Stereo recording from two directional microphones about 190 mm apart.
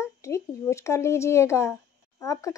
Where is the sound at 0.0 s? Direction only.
15° left (ahead or behind).